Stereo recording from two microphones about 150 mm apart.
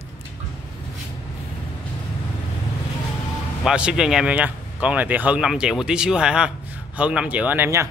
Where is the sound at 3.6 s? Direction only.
5° right (ahead or behind).